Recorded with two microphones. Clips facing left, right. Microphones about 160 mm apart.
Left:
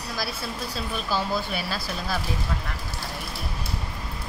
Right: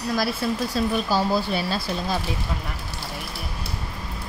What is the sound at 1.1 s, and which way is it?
Speech, 30° right (ahead or behind).